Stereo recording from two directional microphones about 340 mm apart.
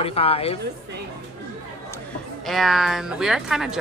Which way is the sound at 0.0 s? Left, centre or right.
Centre.